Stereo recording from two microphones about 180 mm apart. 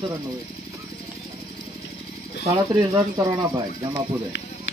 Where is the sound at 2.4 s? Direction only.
25° right (ahead or behind).